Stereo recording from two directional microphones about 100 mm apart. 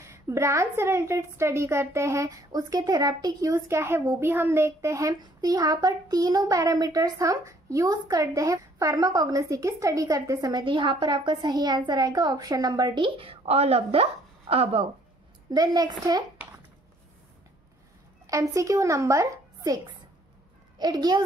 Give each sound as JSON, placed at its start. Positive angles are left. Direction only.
{"t": 0.0, "sound": "a woman's voice", "side_deg": -25}
{"t": 10.5, "sound": "a child's voice", "side_deg": -60}
{"t": 14.5, "sound": "speech", "side_deg": -75}
{"t": 15.5, "sound": "a woman's voice", "side_deg": -40}
{"t": 18.2, "sound": "speech", "side_deg": -35}
{"t": 20.8, "sound": "a woman's voice", "side_deg": -40}